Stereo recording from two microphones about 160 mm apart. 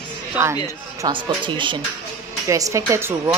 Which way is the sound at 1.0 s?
30° right (ahead or behind).